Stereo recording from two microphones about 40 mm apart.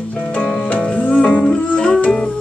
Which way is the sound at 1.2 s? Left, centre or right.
Left.